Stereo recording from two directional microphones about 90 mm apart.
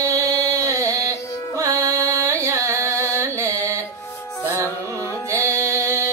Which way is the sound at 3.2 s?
30° right (ahead or behind).